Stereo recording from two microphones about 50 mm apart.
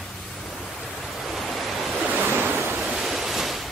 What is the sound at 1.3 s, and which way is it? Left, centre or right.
Waves, centre.